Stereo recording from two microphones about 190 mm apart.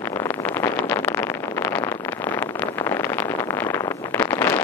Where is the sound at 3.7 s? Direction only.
10° left (ahead or behind).